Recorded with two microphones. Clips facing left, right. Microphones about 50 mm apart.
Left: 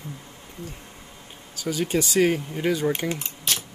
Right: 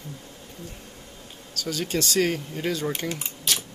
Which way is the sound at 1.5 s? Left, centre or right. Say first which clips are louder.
Left 3 dB; centre.